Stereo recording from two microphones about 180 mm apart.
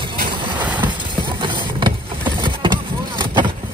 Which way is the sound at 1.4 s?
25° right (ahead or behind).